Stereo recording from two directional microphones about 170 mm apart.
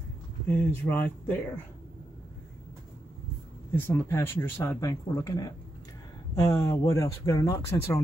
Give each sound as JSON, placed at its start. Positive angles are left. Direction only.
{"t": 0.5, "sound": "speech", "side_deg": 10}
{"t": 3.7, "sound": "speech", "side_deg": 15}